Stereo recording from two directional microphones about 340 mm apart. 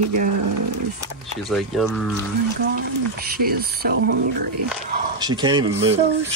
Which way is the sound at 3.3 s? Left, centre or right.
Right.